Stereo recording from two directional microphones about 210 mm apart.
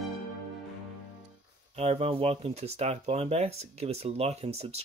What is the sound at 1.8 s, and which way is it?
Speech, 30° right (ahead or behind).